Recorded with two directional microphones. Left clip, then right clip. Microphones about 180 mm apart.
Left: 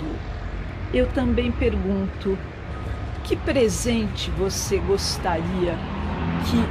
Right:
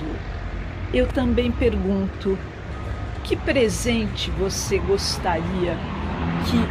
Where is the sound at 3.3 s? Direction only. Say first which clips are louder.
Right 1 dB; 10° left (ahead or behind).